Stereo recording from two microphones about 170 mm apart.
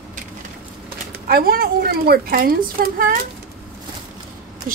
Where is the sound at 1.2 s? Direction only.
60° right (ahead or behind).